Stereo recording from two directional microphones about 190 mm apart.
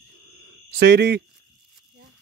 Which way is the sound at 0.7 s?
60° right (ahead or behind).